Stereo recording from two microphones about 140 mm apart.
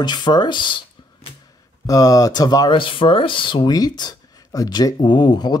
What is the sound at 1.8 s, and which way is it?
Speech, 25° left (ahead or behind).